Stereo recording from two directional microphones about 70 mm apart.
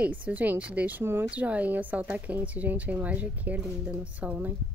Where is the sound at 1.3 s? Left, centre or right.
Right.